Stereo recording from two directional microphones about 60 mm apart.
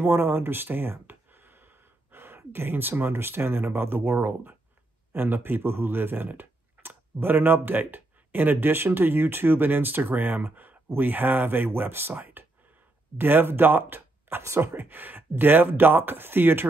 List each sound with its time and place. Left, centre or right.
0.0 s speech: right